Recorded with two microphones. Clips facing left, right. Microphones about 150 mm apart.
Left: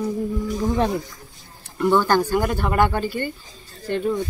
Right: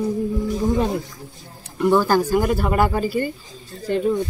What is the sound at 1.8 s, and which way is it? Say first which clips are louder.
Speech: right 1 dB; 5° right (ahead or behind).